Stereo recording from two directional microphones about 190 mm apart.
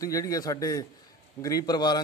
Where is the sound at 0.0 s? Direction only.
20° left (ahead or behind).